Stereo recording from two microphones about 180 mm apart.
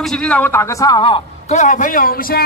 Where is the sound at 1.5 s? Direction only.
45° left (ahead or behind).